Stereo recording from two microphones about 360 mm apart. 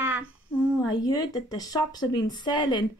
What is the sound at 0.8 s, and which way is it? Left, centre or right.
Speech, centre.